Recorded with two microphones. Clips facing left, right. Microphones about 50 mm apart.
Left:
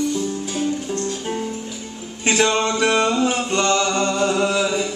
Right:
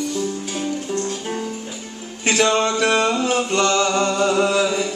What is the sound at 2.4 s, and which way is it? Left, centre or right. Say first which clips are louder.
Music: right 1 dB; centre.